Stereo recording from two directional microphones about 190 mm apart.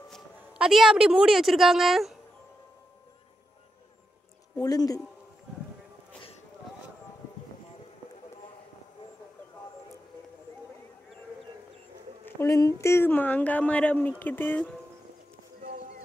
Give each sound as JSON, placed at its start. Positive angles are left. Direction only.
{"t": 0.1, "sound": "a woman's voice", "side_deg": -5}
{"t": 4.6, "sound": "speech", "side_deg": 20}
{"t": 12.3, "sound": "speech", "side_deg": 15}